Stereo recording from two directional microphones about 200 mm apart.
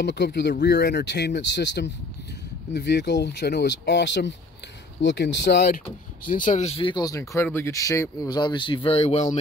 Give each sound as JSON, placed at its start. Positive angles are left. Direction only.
{"t": 0.0, "sound": "speech", "side_deg": 55}
{"t": 6.2, "sound": "speech", "side_deg": 40}